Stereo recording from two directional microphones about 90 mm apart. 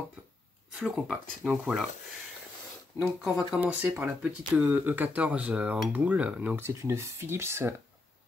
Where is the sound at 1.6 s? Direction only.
10° right (ahead or behind).